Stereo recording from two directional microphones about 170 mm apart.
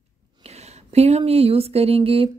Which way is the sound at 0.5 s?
40° right (ahead or behind).